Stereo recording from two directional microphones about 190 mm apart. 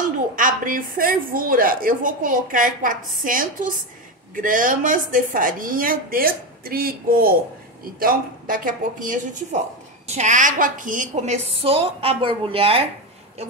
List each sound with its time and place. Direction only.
0.4 s a woman's voice: 45° right (ahead or behind); by 12.8 s 30° right (ahead or behind)